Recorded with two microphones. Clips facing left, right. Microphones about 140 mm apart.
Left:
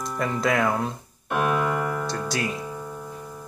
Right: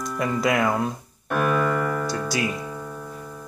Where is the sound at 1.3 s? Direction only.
15° left (ahead or behind).